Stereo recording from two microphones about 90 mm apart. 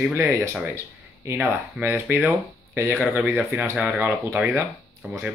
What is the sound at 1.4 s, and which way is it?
Speech, 20° right (ahead or behind).